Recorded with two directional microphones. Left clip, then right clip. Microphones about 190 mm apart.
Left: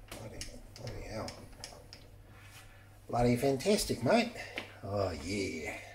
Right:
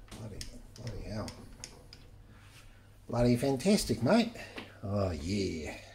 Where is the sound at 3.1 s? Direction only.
45° right (ahead or behind).